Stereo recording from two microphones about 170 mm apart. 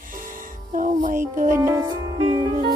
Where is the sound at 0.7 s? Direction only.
50° right (ahead or behind).